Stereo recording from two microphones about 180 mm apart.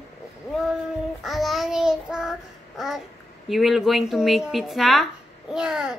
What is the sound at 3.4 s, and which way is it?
Speech, centre (ahead or behind).